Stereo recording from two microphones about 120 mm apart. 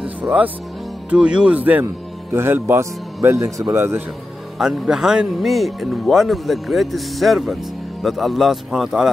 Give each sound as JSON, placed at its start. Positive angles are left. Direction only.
{"t": 0.0, "sound": "music", "side_deg": -10}
{"t": 1.1, "sound": "speech", "side_deg": -10}
{"t": 4.6, "sound": "speech", "side_deg": -5}